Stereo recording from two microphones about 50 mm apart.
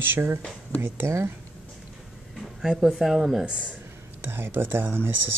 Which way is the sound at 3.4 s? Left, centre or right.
Centre.